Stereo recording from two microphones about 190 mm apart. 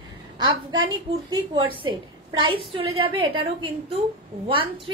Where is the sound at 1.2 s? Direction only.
25° right (ahead or behind).